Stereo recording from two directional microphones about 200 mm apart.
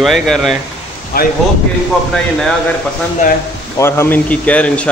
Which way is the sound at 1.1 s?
50° left (ahead or behind).